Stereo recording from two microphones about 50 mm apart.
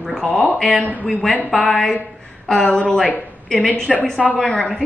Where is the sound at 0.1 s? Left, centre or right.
Centre.